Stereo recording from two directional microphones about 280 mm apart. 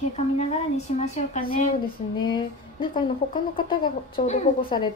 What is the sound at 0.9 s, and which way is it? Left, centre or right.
Speech, left.